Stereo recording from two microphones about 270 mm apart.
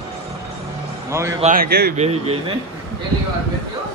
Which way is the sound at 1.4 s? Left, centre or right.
Right.